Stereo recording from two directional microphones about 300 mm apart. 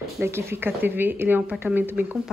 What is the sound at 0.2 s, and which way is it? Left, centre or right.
Speech, centre.